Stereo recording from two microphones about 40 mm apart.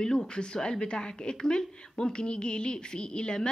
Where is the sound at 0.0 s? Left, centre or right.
Centre.